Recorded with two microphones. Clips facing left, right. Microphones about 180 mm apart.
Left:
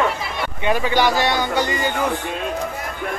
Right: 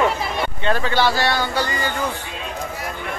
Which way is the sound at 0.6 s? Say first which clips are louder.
Left 2 dB; 15° left (ahead or behind).